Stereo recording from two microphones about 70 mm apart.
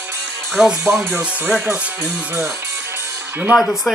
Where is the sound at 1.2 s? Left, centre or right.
Right.